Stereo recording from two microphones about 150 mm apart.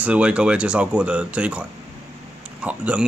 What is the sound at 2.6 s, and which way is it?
Speech, 10° right (ahead or behind).